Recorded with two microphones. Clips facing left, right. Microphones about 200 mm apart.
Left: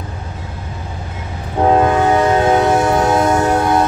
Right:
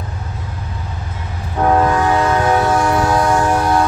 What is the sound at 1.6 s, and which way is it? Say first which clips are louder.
Train: left 2 dB; 20° left (ahead or behind).